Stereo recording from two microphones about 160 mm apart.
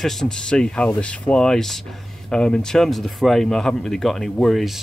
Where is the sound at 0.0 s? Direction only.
5° left (ahead or behind).